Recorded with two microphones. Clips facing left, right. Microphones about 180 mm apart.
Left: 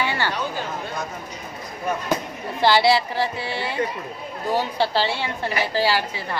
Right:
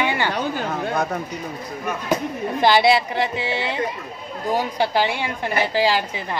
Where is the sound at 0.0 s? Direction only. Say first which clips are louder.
Right 2 dB; 15° right (ahead or behind).